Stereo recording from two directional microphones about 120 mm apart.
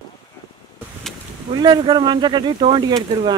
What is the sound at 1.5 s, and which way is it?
Speech, 40° right (ahead or behind).